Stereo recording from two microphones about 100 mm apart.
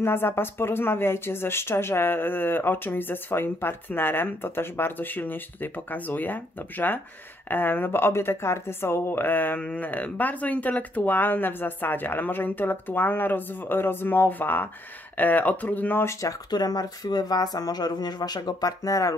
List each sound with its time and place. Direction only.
0.0 s speech: 20° left (ahead or behind)